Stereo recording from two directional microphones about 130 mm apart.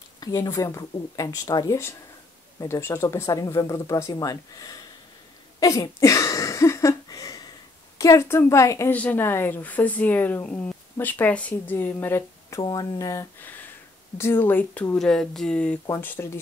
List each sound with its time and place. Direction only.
0.2 s speech: 25° left (ahead or behind)
5.6 s a sound: 25° left (ahead or behind)
8.0 s speech: 20° left (ahead or behind)